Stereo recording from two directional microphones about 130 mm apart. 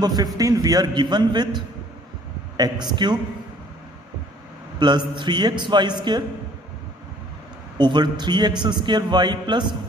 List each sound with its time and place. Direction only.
0.0 s a man's voice: 30° right (ahead or behind)
4.7 s a man's voice: 35° right (ahead or behind)
7.7 s a man's voice: 35° right (ahead or behind)